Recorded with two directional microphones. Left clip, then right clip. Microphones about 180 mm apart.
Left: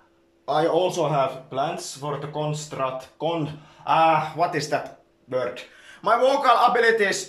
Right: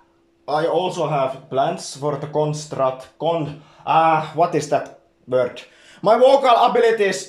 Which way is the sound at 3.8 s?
15° right (ahead or behind).